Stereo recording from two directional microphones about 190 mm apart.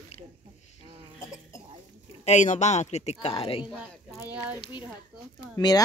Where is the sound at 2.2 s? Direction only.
40° left (ahead or behind).